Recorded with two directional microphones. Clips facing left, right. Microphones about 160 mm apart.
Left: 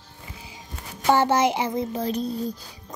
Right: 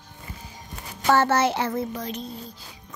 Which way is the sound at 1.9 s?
35° left (ahead or behind).